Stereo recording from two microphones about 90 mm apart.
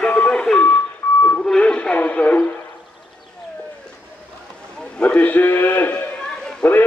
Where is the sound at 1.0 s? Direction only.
30° left (ahead or behind).